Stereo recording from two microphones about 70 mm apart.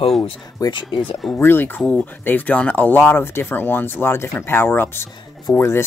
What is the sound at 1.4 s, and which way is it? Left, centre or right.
Speech, left.